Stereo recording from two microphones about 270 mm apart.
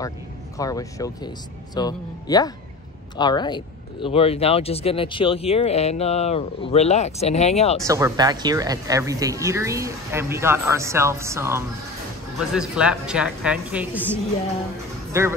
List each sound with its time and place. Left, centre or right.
0.6 s speech: centre
7.8 s a woman's voice: centre
15.2 s speech: centre